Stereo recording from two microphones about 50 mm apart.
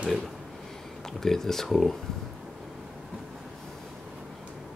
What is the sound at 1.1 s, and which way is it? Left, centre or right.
Speech, centre.